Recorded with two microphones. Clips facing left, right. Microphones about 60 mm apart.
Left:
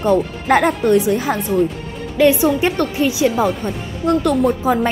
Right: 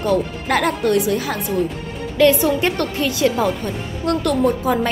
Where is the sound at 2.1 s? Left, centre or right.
Centre.